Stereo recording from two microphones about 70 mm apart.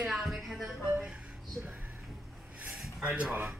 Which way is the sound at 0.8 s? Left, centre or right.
Centre.